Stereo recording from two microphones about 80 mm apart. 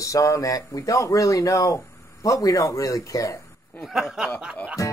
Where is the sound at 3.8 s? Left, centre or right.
Centre.